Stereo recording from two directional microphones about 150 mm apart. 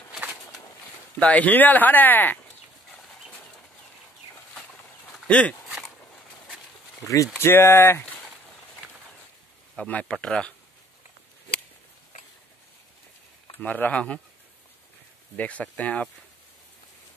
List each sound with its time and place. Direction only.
0.1 s walk: 10° right (ahead or behind)
1.2 s speech: 10° left (ahead or behind)
4.6 s a sound: centre (ahead or behind)
7.0 s speech: 20° left (ahead or behind)
9.8 s speech: 10° left (ahead or behind)
13.6 s speech: 10° left (ahead or behind)
15.3 s speech: 10° left (ahead or behind)